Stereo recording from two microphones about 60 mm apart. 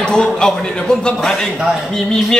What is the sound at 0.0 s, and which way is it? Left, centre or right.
Speech, centre.